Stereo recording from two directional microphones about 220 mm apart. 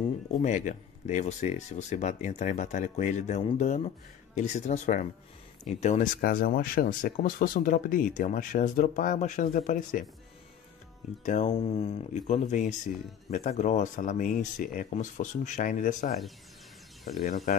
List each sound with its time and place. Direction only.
0.4 s speech: 35° left (ahead or behind)
11.2 s speech: 35° left (ahead or behind)